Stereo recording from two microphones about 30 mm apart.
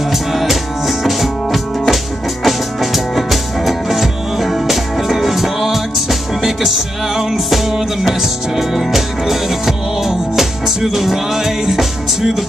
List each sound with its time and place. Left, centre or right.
0.1 s music: centre